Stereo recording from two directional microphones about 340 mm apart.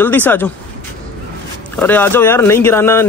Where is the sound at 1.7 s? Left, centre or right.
Centre.